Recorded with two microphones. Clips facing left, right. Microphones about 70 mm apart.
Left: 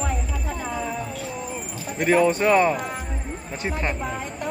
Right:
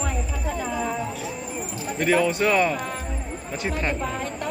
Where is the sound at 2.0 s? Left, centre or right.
Left.